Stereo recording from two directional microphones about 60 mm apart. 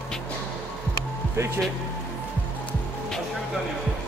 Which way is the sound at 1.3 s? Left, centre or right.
Right.